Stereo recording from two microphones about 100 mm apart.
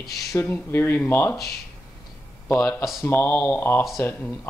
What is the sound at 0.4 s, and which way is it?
Speech, 20° left (ahead or behind).